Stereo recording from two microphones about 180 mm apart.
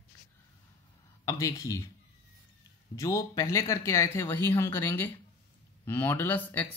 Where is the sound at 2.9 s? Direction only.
20° left (ahead or behind).